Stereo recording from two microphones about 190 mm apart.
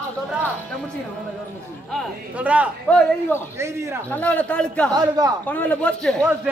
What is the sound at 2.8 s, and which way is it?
A man's voice, 5° left (ahead or behind).